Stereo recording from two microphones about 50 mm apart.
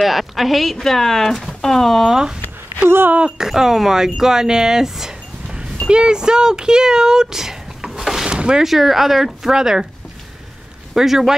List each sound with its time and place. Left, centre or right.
0.0 s speech: centre
2.0 s speech: centre
8.4 s a sound: centre
8.6 s speech: centre
11.0 s speech: centre